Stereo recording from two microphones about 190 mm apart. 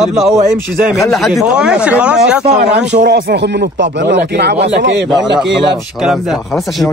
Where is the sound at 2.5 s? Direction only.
65° right (ahead or behind).